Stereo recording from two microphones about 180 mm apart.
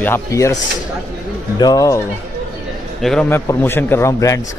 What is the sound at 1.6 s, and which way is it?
Speech, 20° left (ahead or behind).